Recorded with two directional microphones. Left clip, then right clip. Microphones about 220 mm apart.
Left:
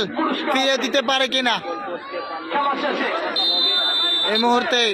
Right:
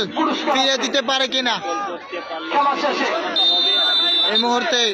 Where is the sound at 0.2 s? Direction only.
45° right (ahead or behind).